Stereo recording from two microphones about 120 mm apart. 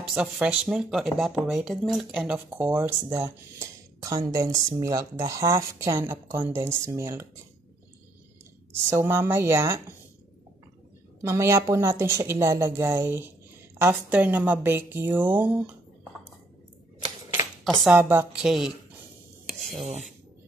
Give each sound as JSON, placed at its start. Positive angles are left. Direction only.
{"t": 0.1, "sound": "speech", "side_deg": -5}
{"t": 8.9, "sound": "speech", "side_deg": -20}
{"t": 11.2, "sound": "speech", "side_deg": -25}
{"t": 17.8, "sound": "speech", "side_deg": -15}
{"t": 18.4, "sound": "speech", "side_deg": -5}
{"t": 19.6, "sound": "a sound", "side_deg": 0}